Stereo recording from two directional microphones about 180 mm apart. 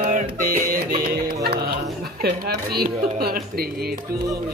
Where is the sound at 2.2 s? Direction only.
60° right (ahead or behind).